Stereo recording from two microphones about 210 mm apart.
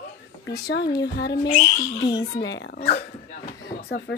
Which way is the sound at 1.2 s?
50° left (ahead or behind).